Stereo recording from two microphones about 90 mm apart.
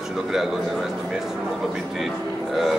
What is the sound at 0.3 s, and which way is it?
Speech, 5° right (ahead or behind).